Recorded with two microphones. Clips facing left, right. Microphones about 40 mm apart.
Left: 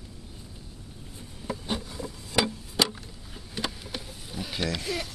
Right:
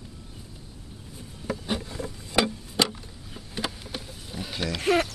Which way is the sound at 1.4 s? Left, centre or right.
Centre.